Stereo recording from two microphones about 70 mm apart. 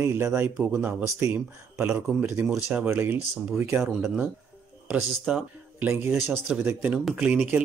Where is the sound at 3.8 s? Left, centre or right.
Centre.